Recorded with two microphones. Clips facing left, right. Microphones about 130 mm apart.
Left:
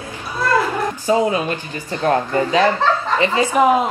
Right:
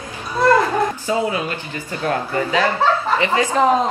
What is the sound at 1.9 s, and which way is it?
Speech, 35° left (ahead or behind).